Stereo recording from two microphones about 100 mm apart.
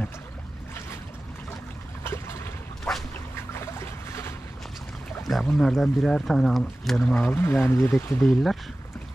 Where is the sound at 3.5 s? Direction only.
25° left (ahead or behind).